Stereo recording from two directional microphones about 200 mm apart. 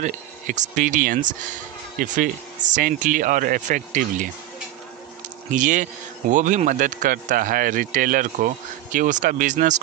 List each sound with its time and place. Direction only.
0.0 s speech: 40° right (ahead or behind)
5.5 s speech: 40° right (ahead or behind)